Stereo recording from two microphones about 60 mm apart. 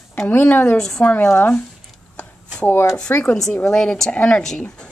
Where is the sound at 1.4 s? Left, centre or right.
Left.